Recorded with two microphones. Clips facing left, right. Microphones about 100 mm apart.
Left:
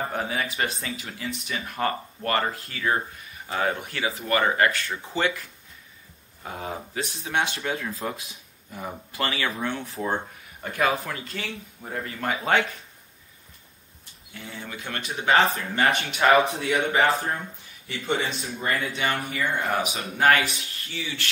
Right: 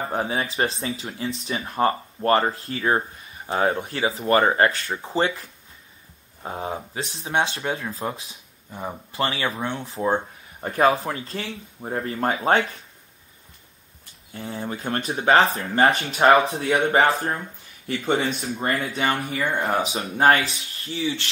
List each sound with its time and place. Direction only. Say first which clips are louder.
0.1 s speech: right 3 dB; 30° right (ahead or behind)
10.6 s speech: right 5 dB; 35° right (ahead or behind)
14.3 s speech: right 7 dB; 35° right (ahead or behind)
18.6 s speech: right 2 dB; 35° right (ahead or behind)